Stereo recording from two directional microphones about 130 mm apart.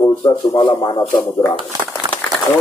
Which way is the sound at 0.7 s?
25° left (ahead or behind).